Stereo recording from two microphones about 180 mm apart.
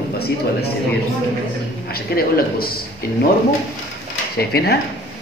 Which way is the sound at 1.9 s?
55° left (ahead or behind).